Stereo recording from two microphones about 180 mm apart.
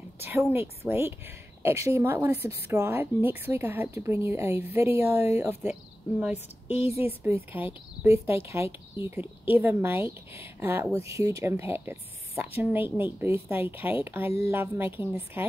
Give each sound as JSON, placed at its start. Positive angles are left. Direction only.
{"t": 0.2, "sound": "a woman's voice", "side_deg": -10}
{"t": 6.7, "sound": "a woman's voice", "side_deg": 35}
{"t": 7.0, "sound": "a woman's voice", "side_deg": -10}